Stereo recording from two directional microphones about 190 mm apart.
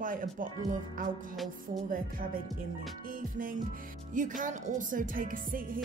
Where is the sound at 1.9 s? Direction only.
45° right (ahead or behind).